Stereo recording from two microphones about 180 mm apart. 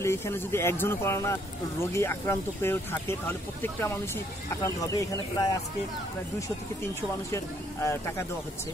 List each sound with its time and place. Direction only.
0.0 s speech: 15° left (ahead or behind)
7.3 s speech: 15° left (ahead or behind)